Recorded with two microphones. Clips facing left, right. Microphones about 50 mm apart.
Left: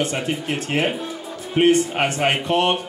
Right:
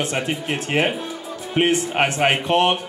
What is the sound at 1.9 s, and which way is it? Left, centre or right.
Speech, centre.